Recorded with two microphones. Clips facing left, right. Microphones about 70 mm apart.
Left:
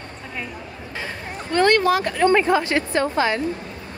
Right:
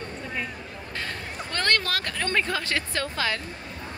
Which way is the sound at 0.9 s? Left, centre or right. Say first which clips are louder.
Left 3 dB; centre.